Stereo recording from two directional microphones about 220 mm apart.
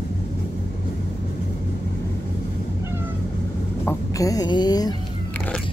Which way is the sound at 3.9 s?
15° left (ahead or behind).